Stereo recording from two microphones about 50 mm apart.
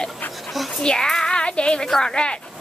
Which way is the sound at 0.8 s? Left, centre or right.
Centre.